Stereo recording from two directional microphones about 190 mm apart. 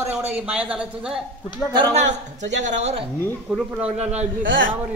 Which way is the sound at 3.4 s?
5° right (ahead or behind).